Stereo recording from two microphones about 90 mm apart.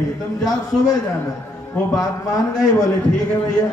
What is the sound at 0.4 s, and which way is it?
Speech, 40° left (ahead or behind).